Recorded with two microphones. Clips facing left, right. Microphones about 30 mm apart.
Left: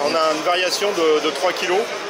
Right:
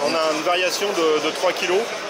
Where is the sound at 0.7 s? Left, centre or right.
Centre.